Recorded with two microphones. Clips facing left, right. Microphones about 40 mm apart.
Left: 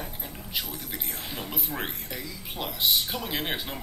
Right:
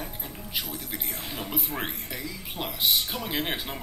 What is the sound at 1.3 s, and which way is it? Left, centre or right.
Speech, centre.